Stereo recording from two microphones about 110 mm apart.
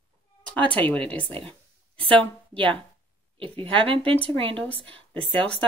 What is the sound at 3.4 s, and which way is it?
Speech, 50° right (ahead or behind).